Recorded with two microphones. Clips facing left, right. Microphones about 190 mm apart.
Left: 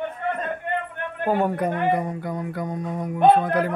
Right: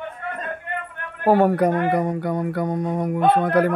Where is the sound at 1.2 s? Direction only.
75° right (ahead or behind).